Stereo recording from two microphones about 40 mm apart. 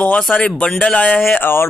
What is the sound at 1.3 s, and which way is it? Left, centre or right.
Music, left.